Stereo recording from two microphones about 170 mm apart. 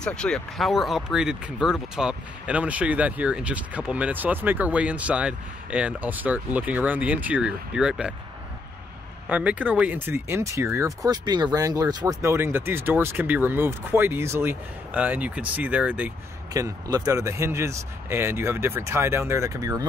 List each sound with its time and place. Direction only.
0.0 s speech: 5° left (ahead or behind)
9.3 s speech: 10° right (ahead or behind)
16.5 s speech: 20° right (ahead or behind)